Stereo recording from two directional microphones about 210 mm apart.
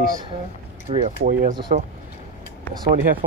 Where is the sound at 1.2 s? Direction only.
40° right (ahead or behind).